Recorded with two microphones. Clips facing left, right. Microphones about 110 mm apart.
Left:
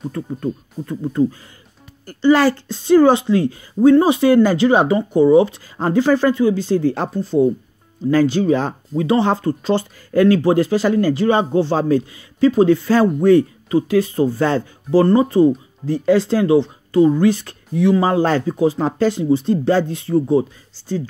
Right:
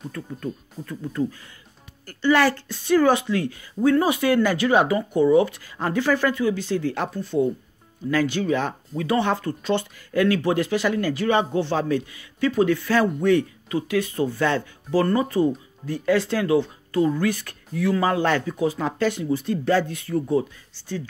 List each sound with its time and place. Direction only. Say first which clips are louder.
0.1 s speech: left 7 dB; 30° left (ahead or behind)